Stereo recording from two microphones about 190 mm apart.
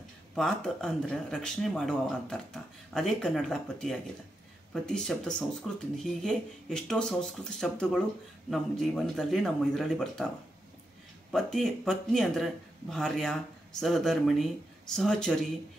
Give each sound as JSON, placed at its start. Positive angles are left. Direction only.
{"t": 0.3, "sound": "speech", "side_deg": 0}
{"t": 11.3, "sound": "speech", "side_deg": 0}